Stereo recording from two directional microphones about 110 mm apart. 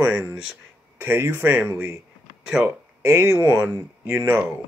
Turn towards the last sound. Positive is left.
turn(degrees=-20)  # may be behind; listen again after turning